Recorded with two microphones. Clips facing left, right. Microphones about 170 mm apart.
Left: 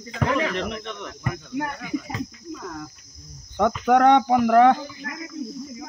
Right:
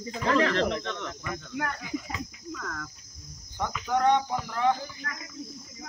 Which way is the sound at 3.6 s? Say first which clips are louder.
Left 9 dB; 65° left (ahead or behind).